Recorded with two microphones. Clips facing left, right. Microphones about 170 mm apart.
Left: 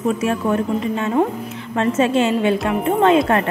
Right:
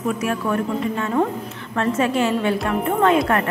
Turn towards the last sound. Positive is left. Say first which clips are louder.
# left 3 dB
turn(degrees=25)  # may be behind; listen again after turning